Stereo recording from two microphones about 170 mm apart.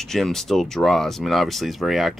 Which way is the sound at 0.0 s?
Centre (ahead or behind).